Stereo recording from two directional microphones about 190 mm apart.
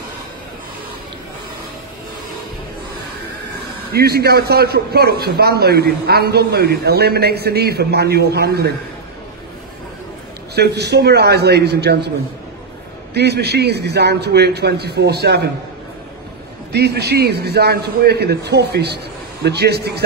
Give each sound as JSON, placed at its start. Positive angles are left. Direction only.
{"t": 3.9, "sound": "a man's voice", "side_deg": -55}
{"t": 10.5, "sound": "a man's voice", "side_deg": -60}
{"t": 13.1, "sound": "a man's voice", "side_deg": -60}
{"t": 16.7, "sound": "a man's voice", "side_deg": -60}